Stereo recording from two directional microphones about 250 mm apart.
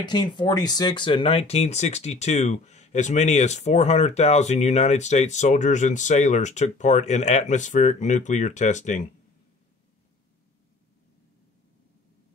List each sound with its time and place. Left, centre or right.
0.0 s speech: centre